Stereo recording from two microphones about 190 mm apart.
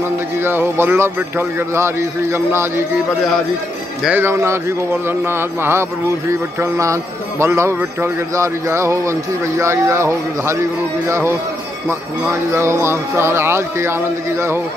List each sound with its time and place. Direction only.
0.4 s a man's voice: 10° right (ahead or behind)
4.0 s a man's voice: 10° right (ahead or behind)
12.4 s a man's voice: 15° right (ahead or behind)